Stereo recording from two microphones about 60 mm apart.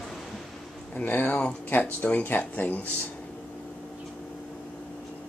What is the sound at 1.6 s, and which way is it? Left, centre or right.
Speech, left.